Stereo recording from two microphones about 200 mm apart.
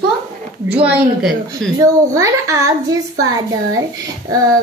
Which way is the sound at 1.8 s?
15° right (ahead or behind).